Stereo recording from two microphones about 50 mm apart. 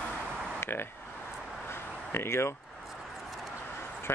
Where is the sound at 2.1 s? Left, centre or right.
Left.